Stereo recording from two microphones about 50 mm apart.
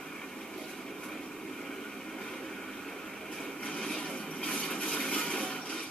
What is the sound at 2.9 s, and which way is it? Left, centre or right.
Vehicle, centre.